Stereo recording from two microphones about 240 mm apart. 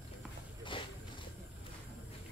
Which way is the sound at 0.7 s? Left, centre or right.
Left.